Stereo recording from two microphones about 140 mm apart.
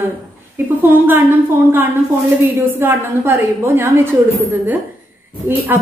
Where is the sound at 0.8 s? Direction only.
15° right (ahead or behind).